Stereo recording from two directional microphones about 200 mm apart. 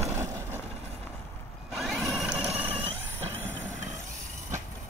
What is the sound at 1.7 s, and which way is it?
Vehicle, centre (ahead or behind).